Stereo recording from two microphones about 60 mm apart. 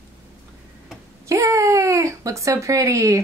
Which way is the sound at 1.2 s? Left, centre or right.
Right.